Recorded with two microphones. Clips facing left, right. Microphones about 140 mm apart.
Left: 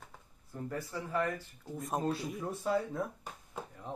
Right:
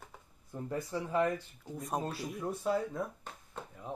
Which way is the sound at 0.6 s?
20° right (ahead or behind).